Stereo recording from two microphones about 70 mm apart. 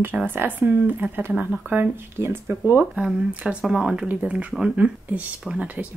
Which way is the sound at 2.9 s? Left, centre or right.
Centre.